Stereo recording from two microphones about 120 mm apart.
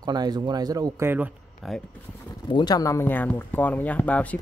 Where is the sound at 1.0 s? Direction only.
20° right (ahead or behind).